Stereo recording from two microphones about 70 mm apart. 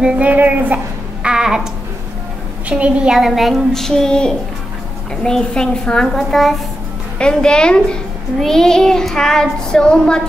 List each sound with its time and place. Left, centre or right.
0.0 s speech: centre
1.2 s babbling: centre
2.7 s a woman's voice: centre
7.2 s a child's voice: centre